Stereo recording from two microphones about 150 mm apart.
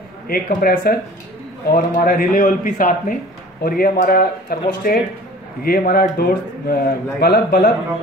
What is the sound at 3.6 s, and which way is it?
Speech, 80° left.